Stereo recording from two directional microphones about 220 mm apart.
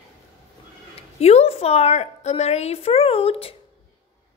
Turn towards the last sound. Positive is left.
turn(degrees=25)  # may be behind; listen again after turning